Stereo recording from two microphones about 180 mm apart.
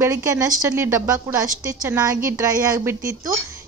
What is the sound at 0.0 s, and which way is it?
A woman's voice, 15° right (ahead or behind).